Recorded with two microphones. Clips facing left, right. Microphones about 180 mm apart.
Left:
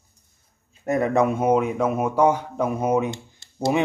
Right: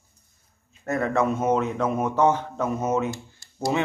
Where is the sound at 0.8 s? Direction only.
15° left (ahead or behind).